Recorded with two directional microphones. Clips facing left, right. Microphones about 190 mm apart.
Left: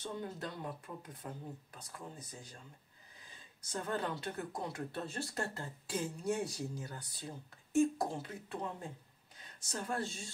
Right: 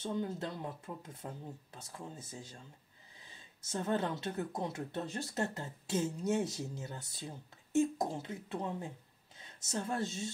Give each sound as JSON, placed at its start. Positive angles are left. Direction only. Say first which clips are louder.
{"t": 0.0, "sound": "speech", "louder": "right 5 dB", "side_deg": -25}
{"t": 3.6, "sound": "speech", "louder": "right 4 dB", "side_deg": -25}
{"t": 9.6, "sound": "speech", "louder": "right 3 dB", "side_deg": -25}